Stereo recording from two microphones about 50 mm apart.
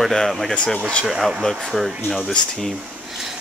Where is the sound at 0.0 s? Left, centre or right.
Centre.